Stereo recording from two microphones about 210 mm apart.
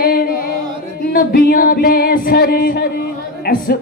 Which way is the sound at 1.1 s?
45° left (ahead or behind).